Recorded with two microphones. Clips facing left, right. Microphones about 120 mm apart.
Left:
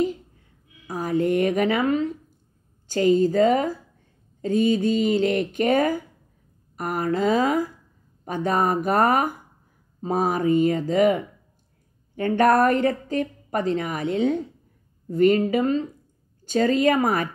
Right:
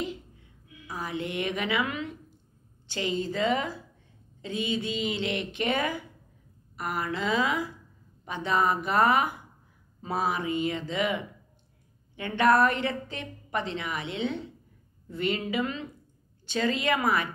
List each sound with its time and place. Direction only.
0.8 s a woman's voice: 45° left (ahead or behind)